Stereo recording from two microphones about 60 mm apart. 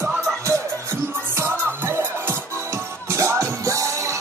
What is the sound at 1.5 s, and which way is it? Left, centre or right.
Music, right.